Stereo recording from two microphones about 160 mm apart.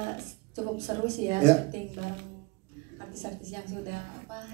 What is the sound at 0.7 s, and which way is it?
Speech, 40° right (ahead or behind).